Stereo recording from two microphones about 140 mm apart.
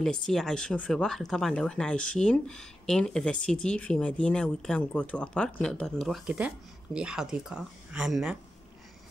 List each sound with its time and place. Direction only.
0.0 s speech: 5° left (ahead or behind)